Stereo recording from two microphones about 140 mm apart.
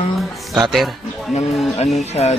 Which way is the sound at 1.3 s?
50° left (ahead or behind).